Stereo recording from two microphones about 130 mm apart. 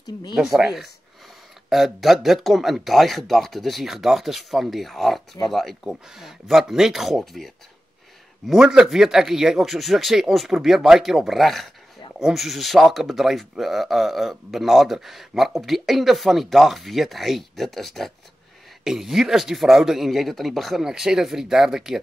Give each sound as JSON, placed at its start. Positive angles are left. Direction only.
{"t": 0.0, "sound": "speech", "side_deg": 35}
{"t": 0.4, "sound": "speech", "side_deg": -5}